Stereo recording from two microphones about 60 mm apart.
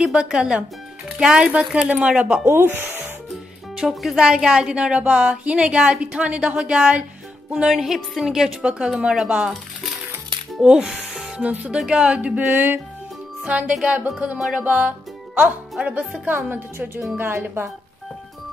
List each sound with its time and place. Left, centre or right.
0.0 s a woman's voice: centre
2.4 s a woman's voice: right
3.7 s speech: centre
7.5 s a woman's voice: centre
10.6 s speech: centre; by 12.8 s right
13.4 s music: right
13.8 s speech: centre
14.6 s music: right
15.8 s a woman's voice: right